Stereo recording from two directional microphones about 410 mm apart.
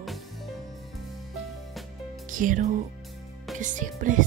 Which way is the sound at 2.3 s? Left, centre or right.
Centre.